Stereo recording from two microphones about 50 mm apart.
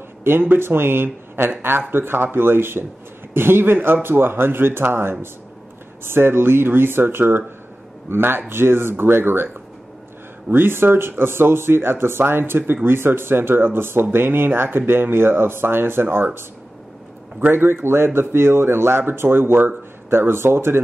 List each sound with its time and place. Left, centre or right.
0.2 s speech: right
10.5 s speech: right
17.4 s speech: right